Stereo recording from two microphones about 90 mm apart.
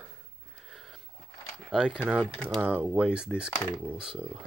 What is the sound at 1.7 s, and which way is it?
Speech, 10° right (ahead or behind).